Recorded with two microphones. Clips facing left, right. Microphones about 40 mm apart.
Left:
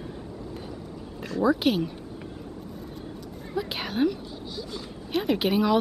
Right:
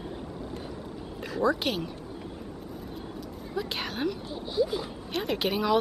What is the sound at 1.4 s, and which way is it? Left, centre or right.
Speech, centre.